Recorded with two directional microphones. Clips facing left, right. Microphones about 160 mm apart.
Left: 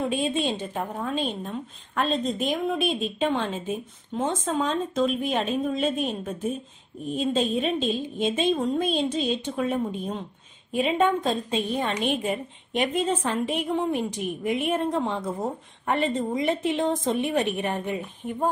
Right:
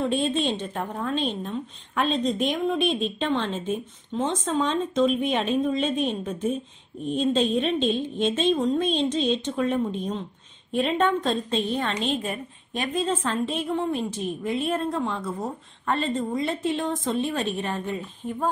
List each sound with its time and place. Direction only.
0.0 s a woman's voice: 10° left (ahead or behind)